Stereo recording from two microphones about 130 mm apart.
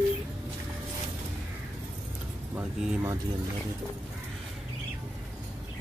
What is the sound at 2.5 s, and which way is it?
Speech, 20° right (ahead or behind).